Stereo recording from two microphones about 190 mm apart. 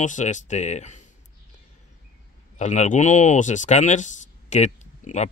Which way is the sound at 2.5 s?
40° left (ahead or behind).